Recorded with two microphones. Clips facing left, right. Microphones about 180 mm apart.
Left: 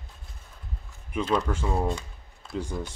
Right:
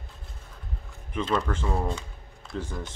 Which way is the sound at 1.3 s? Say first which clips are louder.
Left 1 dB; 10° left (ahead or behind).